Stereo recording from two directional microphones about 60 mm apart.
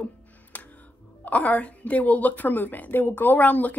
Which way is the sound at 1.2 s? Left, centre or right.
Left.